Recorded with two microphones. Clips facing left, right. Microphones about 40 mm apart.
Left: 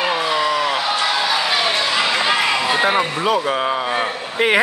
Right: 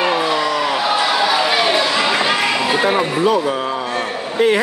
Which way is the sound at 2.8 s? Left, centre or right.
Centre.